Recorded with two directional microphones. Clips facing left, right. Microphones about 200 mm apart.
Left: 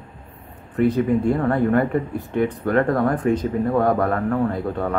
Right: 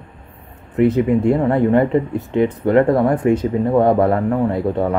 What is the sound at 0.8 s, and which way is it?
Speech, 25° right (ahead or behind).